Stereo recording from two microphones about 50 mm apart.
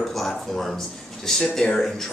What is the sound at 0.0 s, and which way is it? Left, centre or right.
Speech, centre.